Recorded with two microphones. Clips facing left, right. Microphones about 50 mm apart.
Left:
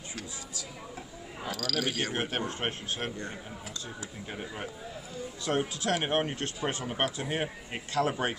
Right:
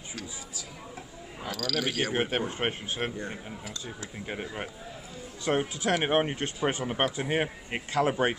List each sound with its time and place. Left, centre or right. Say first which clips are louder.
1.4 s speech: right 1 dB; centre
2.1 s a man's voice: right 4 dB; centre